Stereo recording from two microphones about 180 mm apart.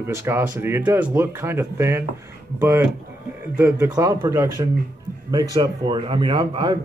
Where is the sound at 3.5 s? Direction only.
10° right (ahead or behind).